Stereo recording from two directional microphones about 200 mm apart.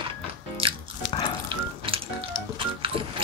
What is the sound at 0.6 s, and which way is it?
Biting, 25° right (ahead or behind).